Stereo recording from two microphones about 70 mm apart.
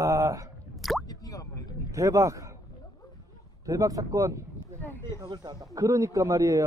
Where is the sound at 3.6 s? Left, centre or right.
Right.